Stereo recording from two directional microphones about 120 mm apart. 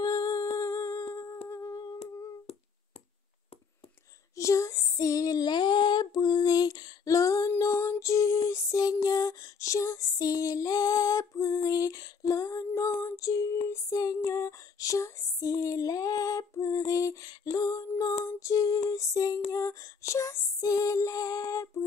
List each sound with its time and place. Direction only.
0.0 s humming: 35° left (ahead or behind)
4.4 s female singing: 25° left (ahead or behind)
13.7 s music: 30° left (ahead or behind)
18.2 s female singing: 25° left (ahead or behind)
18.9 s music: 30° left (ahead or behind)